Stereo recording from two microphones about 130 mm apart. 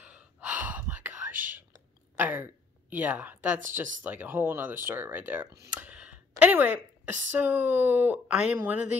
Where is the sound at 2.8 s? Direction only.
10° right (ahead or behind).